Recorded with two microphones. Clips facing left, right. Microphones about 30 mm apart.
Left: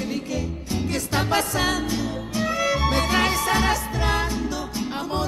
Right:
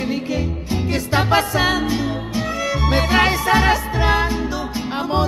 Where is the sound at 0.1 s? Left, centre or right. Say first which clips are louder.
Right 5 dB; right.